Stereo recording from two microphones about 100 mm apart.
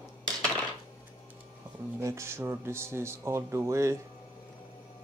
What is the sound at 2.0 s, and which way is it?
Speech, 30° right (ahead or behind).